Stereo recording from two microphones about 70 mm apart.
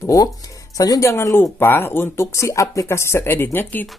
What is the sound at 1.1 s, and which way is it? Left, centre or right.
Speech, left.